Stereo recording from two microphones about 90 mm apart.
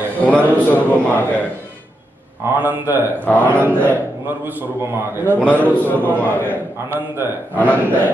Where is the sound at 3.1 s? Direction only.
20° left (ahead or behind).